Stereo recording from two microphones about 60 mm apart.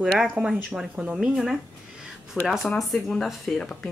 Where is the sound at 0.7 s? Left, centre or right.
Centre.